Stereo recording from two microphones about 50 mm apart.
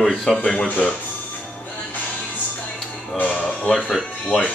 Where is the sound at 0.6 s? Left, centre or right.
Left.